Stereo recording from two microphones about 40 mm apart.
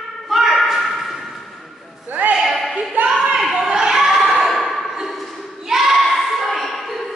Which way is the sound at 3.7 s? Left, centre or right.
Centre.